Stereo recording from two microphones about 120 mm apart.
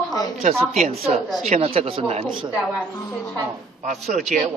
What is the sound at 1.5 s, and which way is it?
Speech, 50° right (ahead or behind).